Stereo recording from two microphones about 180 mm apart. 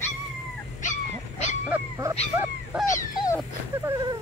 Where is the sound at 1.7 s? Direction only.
15° right (ahead or behind).